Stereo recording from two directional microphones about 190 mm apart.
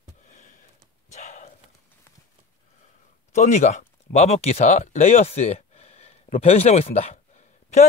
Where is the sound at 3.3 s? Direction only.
35° left (ahead or behind).